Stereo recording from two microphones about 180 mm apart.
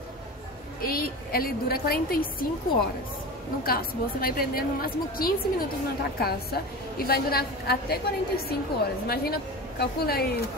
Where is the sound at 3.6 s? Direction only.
55° left (ahead or behind).